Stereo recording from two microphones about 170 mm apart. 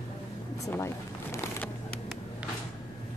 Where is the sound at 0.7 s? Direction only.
15° left (ahead or behind).